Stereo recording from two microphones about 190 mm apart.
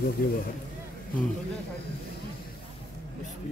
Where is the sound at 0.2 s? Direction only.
50° left (ahead or behind).